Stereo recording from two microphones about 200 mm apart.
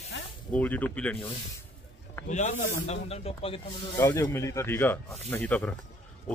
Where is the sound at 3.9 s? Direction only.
15° left (ahead or behind).